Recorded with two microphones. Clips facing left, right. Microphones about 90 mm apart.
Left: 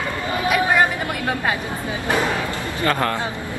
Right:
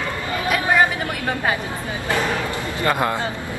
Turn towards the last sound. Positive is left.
turn(degrees=-15)  # may be behind; listen again after turning